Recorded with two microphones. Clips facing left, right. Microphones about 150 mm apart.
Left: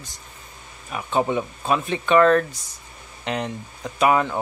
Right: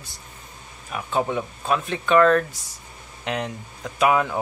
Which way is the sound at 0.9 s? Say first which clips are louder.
Left 2 dB; centre (ahead or behind).